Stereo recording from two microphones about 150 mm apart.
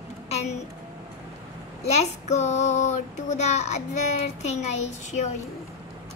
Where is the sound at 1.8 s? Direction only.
45° left (ahead or behind).